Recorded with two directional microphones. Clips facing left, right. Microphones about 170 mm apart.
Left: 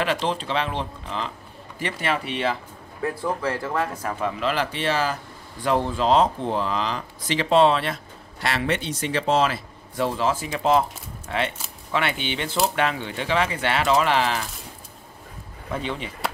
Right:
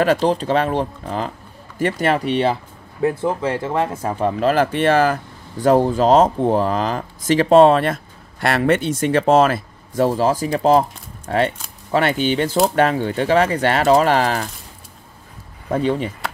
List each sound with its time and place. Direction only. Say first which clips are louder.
0.0 s speech: right 8 dB; 40° right (ahead or behind)
3.0 s speech: right 7 dB; 25° right (ahead or behind); by 14.5 s 45° right (ahead or behind)
15.7 s speech: right 10 dB; 40° right (ahead or behind)